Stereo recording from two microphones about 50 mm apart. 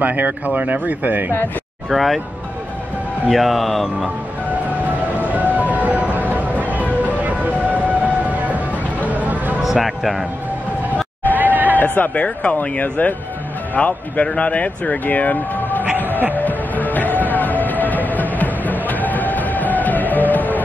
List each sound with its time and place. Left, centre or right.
0.0 s speech: right
1.9 s speech: centre
3.3 s speech: centre
5.3 s music: right
9.1 s a sound: right
9.6 s speech: centre
11.3 s hubbub: right
11.7 s speech: left
16.3 s music: left